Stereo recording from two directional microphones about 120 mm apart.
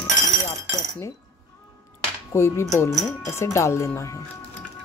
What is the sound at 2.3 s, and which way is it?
Speech, 20° left (ahead or behind).